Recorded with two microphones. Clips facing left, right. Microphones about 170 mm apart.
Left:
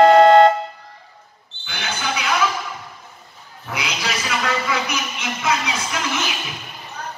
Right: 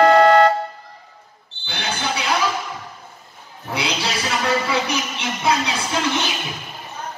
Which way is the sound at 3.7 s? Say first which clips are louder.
Right 2 dB; 30° right (ahead or behind).